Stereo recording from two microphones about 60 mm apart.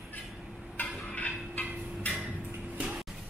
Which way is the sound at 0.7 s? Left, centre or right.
Left.